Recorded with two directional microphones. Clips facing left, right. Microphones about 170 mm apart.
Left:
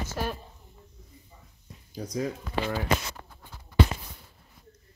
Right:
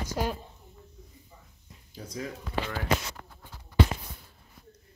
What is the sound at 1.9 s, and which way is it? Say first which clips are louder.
Speech: left 6 dB; 40° left (ahead or behind).